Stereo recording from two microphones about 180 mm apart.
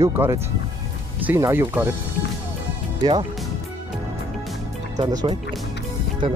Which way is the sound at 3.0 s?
25° right (ahead or behind).